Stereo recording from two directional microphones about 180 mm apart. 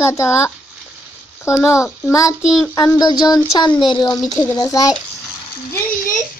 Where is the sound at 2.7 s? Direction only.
20° left (ahead or behind).